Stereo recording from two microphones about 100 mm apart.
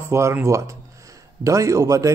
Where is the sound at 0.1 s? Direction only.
25° right (ahead or behind).